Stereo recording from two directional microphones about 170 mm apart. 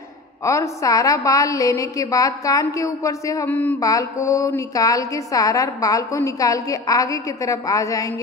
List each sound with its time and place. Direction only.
0.4 s a woman's voice: 15° left (ahead or behind)